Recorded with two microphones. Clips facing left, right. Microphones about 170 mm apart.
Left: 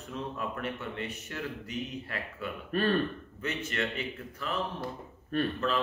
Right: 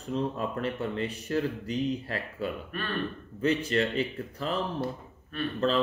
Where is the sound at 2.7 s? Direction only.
40° left (ahead or behind).